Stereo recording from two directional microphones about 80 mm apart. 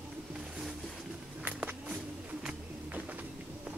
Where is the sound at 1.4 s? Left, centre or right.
Right.